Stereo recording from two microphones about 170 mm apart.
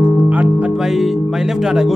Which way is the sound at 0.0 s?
10° right (ahead or behind).